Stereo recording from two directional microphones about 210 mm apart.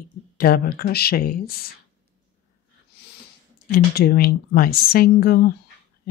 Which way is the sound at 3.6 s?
50° left (ahead or behind).